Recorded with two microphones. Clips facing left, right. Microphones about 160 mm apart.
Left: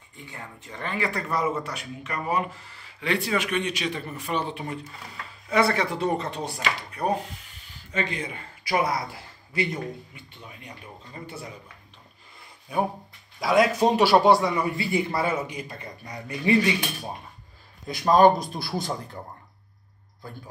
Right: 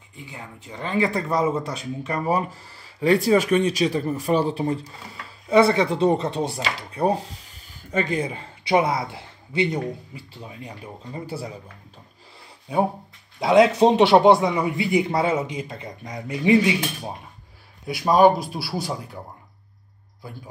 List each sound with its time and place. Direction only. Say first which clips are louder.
0.1 s speech: right 2 dB; 15° right (ahead or behind)
0.8 s speech: right 6 dB; 25° right (ahead or behind)
7.6 s speech: right 5 dB; 45° right (ahead or behind)
13.4 s speech: right 5 dB; 25° right (ahead or behind)
17.8 s speech: right 1 dB; 10° right (ahead or behind)